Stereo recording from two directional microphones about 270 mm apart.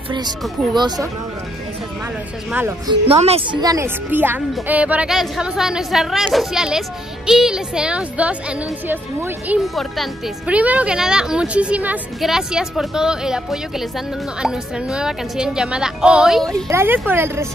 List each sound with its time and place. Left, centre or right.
0.7 s speech: centre
2.5 s speech: centre
3.1 s a woman's voice: right